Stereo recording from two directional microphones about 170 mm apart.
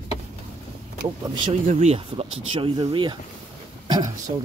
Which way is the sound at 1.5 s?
40° right (ahead or behind).